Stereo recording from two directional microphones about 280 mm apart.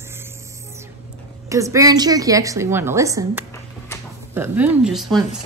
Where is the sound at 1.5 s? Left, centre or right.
Centre.